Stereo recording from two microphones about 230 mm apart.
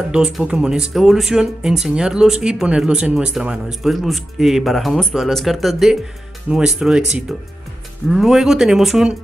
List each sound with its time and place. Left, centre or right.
0.1 s speech: centre